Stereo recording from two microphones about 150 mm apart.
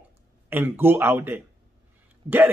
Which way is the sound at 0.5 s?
15° right (ahead or behind).